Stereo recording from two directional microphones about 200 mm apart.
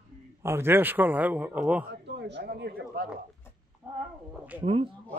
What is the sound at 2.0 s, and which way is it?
Speech, 60° right (ahead or behind).